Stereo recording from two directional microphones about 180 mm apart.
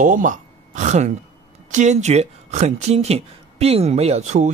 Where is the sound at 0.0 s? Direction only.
45° right (ahead or behind).